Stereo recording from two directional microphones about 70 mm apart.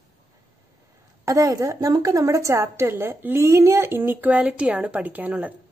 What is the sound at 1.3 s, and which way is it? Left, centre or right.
A woman's voice, right.